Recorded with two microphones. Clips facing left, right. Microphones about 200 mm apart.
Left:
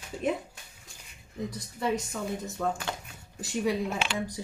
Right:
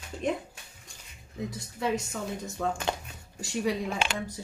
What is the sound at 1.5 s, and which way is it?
Speech, centre (ahead or behind).